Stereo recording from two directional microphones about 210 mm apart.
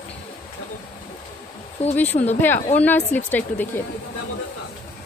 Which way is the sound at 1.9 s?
10° left (ahead or behind).